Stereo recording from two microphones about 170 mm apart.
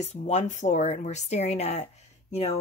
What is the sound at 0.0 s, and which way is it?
Speech, 40° left (ahead or behind).